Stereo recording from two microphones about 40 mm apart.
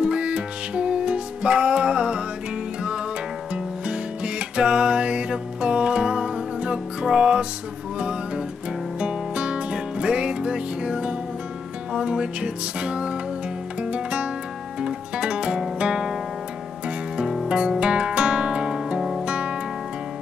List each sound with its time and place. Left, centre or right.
0.0 s music: right
3.5 s music: right
9.0 s music: right
17.5 s music: centre
19.2 s music: right